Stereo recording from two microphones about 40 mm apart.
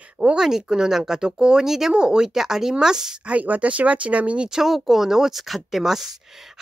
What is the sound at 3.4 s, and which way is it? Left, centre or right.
Speech, right.